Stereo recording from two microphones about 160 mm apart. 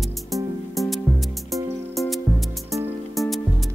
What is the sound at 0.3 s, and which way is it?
Music, centre (ahead or behind).